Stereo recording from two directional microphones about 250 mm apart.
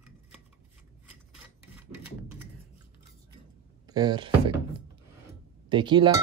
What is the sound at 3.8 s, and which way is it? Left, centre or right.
Speech, centre.